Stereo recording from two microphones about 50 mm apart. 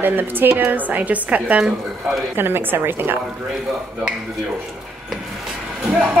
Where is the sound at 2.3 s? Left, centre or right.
Right.